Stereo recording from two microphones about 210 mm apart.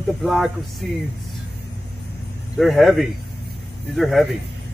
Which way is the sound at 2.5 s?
Centre (ahead or behind).